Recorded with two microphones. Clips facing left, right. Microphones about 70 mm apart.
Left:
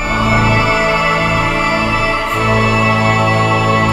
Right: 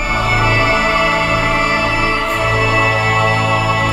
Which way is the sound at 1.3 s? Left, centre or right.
Centre.